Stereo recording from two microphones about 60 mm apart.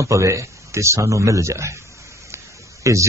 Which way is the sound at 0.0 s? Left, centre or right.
Right.